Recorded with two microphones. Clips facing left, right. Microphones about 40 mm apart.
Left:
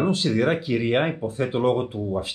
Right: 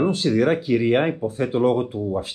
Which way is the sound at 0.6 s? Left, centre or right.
Left.